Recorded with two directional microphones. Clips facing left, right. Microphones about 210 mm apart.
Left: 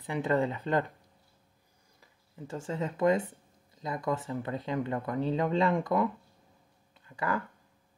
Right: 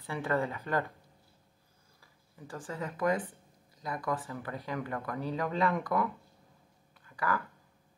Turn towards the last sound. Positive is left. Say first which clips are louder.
# left 1 dB
turn(degrees=25)  # may be behind; listen again after turning